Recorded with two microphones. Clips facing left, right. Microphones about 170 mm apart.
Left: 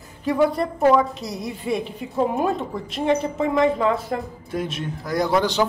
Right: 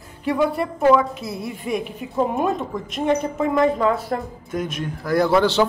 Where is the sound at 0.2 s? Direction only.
40° left (ahead or behind).